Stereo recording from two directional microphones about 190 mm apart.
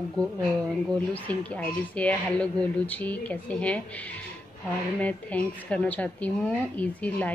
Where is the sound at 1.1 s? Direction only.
10° left (ahead or behind).